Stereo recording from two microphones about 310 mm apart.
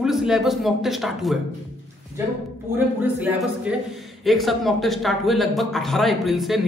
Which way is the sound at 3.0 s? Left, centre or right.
Centre.